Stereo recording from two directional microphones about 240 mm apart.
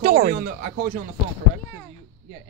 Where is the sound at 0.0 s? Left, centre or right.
Right.